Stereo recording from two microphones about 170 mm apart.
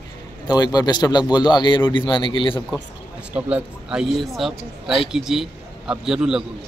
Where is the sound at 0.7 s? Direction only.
25° left (ahead or behind).